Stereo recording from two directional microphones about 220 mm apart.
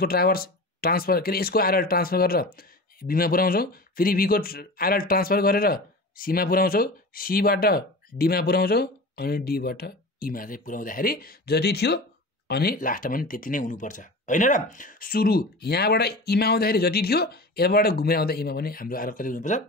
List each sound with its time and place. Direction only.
0.0 s speech: 45° left (ahead or behind)